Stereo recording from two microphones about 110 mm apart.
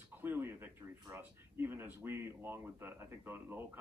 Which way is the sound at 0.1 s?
20° right (ahead or behind).